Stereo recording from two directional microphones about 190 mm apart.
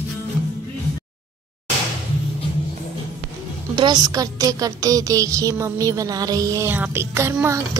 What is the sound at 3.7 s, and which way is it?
Speech, 20° right (ahead or behind).